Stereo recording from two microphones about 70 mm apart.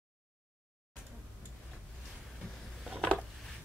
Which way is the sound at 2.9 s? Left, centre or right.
Centre.